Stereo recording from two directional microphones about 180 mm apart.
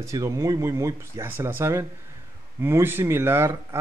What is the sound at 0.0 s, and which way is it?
Speech, 15° right (ahead or behind).